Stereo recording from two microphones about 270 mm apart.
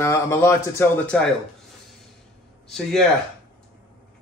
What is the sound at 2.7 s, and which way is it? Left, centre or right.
Speech, centre.